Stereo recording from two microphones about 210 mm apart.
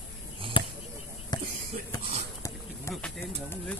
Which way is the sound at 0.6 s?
25° left (ahead or behind).